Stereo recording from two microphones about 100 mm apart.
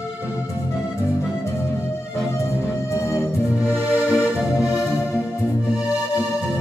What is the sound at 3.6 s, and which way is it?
Music, 30° left (ahead or behind).